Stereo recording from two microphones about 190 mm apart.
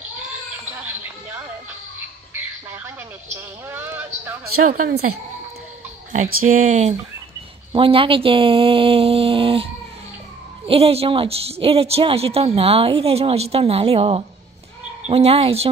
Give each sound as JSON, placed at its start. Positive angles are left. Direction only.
{"t": 2.3, "sound": "squawk", "side_deg": -10}
{"t": 3.3, "sound": "speech", "side_deg": -10}
{"t": 4.6, "sound": "a woman's voice", "side_deg": -50}
{"t": 6.4, "sound": "a woman's voice", "side_deg": -45}
{"t": 10.7, "sound": "a woman's voice", "side_deg": -30}